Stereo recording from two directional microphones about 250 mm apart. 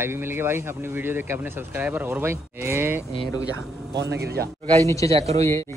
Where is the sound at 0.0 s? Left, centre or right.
Centre.